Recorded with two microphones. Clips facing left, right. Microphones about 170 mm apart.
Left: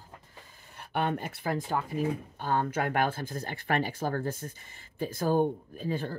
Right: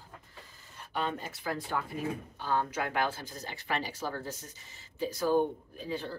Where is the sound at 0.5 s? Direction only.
60° left (ahead or behind).